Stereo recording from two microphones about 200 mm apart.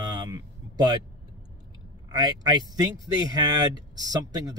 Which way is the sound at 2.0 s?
20° right (ahead or behind).